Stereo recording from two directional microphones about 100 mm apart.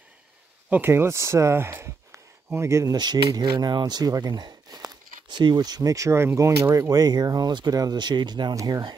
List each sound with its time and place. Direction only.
0.7 s speech: 20° right (ahead or behind)
3.3 s speech: 45° right (ahead or behind)
8.5 s speech: 35° right (ahead or behind)